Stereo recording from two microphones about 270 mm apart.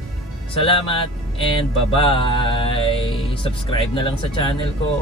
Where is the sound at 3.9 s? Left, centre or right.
Centre.